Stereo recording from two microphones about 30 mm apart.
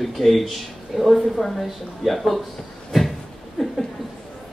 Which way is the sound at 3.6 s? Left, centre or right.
Centre.